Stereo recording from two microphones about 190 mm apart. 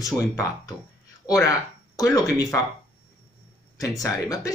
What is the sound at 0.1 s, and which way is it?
Speech, 20° left (ahead or behind).